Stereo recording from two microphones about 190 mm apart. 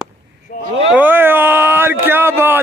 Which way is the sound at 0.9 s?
10° right (ahead or behind).